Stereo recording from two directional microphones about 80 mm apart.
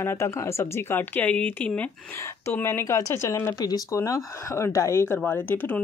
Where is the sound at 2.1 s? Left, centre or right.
Left.